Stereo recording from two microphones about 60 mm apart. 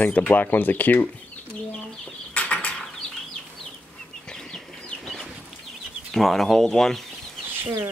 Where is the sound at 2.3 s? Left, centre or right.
Left.